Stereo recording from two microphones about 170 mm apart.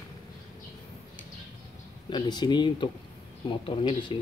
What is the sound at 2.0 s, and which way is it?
Speech, 25° left (ahead or behind).